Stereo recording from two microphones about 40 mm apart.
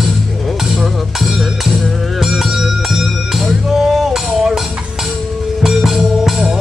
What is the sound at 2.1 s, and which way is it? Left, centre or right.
Bell, centre.